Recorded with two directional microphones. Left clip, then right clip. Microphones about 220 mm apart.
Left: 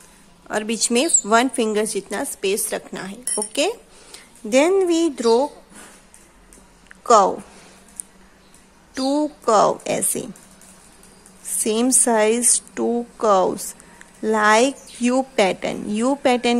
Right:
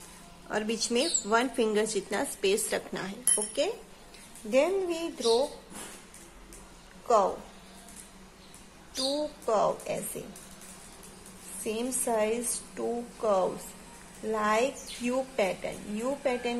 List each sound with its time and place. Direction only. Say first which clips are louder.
0.5 s a woman's voice: left 8 dB; 30° left (ahead or behind)
4.5 s a woman's voice: left 10 dB; 45° left (ahead or behind)
8.9 s a woman's voice: left 9 dB; 45° left (ahead or behind)
11.6 s a woman's voice: left 12 dB; 45° left (ahead or behind)